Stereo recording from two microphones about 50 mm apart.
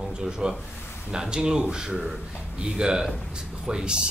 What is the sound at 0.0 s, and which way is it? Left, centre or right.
Speech, centre.